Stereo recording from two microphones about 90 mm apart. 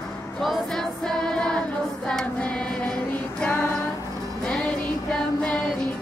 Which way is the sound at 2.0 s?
10° left (ahead or behind).